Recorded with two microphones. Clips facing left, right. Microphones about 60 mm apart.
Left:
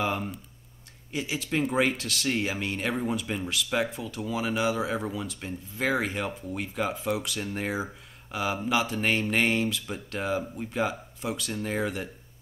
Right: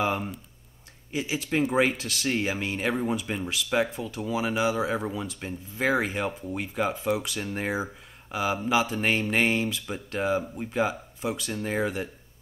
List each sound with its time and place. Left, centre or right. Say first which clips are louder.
0.0 s speech: right 2 dB; centre